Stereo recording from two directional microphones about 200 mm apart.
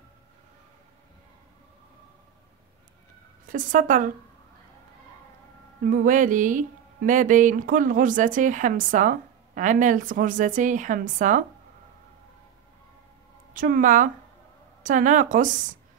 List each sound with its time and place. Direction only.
3.4 s speech: 40° right (ahead or behind)
5.9 s speech: 40° right (ahead or behind)
13.5 s a woman's voice: 40° right (ahead or behind)